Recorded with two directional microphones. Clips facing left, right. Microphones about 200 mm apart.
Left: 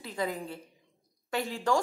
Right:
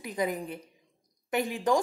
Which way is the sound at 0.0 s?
15° right (ahead or behind).